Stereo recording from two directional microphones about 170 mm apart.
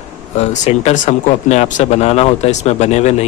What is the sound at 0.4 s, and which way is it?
Speech, 40° left (ahead or behind).